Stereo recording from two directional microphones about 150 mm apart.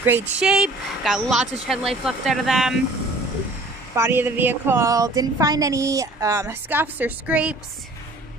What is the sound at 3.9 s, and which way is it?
A woman's voice, 15° right (ahead or behind).